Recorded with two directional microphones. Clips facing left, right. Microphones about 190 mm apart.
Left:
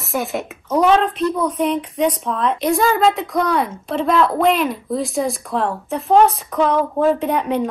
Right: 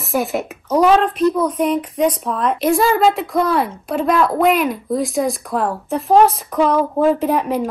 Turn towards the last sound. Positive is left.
turn(degrees=-5)  # may be behind; listen again after turning